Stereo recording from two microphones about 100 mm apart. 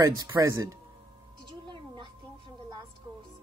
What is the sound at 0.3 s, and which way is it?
Speech, 30° right (ahead or behind).